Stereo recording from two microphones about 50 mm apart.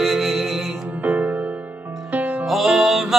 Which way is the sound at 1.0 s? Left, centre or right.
Right.